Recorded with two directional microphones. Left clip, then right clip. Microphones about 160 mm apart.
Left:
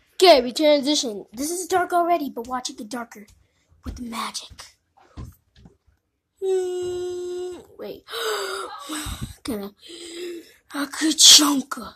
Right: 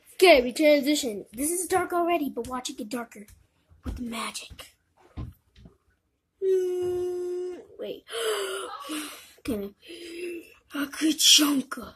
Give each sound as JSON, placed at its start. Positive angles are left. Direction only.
{"t": 0.2, "sound": "a woman's voice", "side_deg": 15}
{"t": 6.4, "sound": "speech", "side_deg": 10}
{"t": 11.1, "sound": "speech", "side_deg": 5}
{"t": 11.4, "sound": "speech", "side_deg": 25}